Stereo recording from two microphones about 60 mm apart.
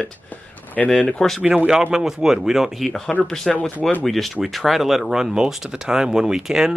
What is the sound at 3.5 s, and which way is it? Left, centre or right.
Speech, left.